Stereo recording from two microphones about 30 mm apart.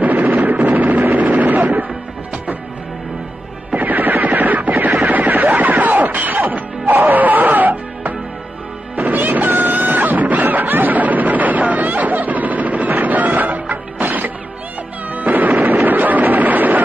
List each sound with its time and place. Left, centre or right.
0.0 s vehicle: right
3.7 s a sound: right
5.5 s music: right